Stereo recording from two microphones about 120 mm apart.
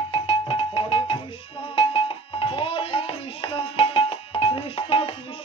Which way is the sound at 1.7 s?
50° left (ahead or behind).